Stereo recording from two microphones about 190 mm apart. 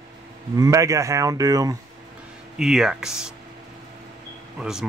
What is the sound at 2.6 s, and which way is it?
Speech, 5° right (ahead or behind).